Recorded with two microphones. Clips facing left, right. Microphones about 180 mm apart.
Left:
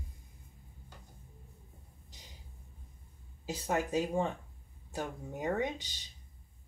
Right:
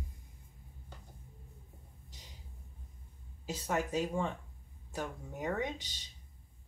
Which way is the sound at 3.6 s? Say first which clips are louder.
Left 2 dB; 25° left (ahead or behind).